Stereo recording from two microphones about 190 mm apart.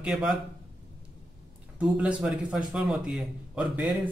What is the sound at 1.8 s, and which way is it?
Speech, 5° right (ahead or behind).